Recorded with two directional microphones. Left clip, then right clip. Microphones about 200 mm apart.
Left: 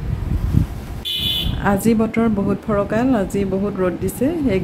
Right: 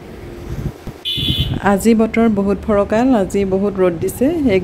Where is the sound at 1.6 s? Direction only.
20° right (ahead or behind).